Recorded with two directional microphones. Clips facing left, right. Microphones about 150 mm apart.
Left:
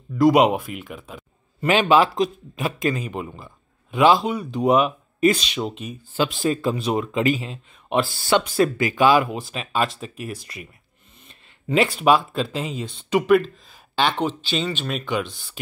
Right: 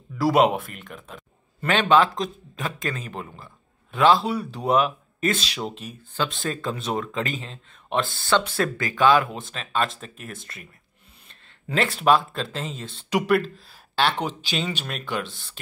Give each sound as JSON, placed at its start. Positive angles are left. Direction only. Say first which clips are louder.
{"t": 0.2, "sound": "a man's voice", "louder": "left 3 dB", "side_deg": 0}
{"t": 9.0, "sound": "speech", "louder": "left 1 dB", "side_deg": 5}
{"t": 14.9, "sound": "speech", "louder": "left 4 dB", "side_deg": 0}